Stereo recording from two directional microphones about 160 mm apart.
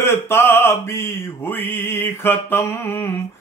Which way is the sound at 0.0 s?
15° left (ahead or behind).